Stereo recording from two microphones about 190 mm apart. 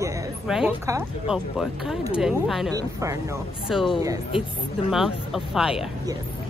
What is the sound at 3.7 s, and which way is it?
Speech, centre (ahead or behind).